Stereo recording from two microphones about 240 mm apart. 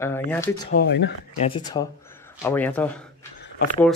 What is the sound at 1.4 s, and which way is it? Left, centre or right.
Speech, centre.